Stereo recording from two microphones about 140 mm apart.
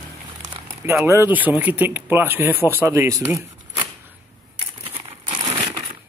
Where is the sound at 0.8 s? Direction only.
15° right (ahead or behind).